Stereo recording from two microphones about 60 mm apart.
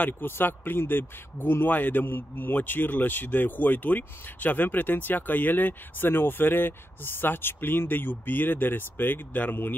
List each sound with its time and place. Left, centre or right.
0.2 s speech: left